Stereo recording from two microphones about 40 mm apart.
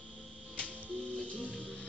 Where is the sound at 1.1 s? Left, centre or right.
Left.